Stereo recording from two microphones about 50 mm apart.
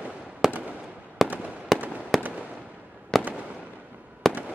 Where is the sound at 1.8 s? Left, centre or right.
Right.